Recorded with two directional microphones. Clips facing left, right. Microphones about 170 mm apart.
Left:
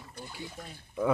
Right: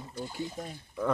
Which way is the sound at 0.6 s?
40° right (ahead or behind).